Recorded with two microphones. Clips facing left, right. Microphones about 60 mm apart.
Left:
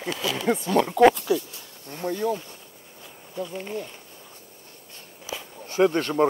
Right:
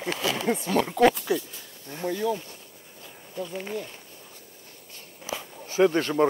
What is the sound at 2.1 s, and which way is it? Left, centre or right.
Speech, left.